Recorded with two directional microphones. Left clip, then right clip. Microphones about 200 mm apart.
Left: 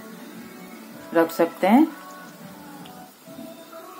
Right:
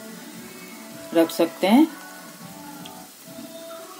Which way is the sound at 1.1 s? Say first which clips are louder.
Even; 20° right (ahead or behind).